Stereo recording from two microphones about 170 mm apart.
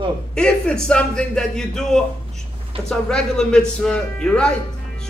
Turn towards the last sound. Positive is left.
turn(degrees=5)  # may be behind; listen again after turning